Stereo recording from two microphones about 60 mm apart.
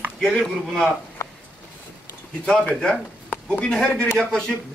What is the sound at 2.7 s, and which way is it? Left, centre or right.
Speech, centre.